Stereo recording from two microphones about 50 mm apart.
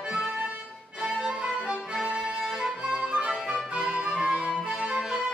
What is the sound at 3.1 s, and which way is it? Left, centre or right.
Music, centre.